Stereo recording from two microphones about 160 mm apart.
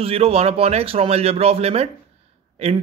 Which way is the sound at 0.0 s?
40° right (ahead or behind).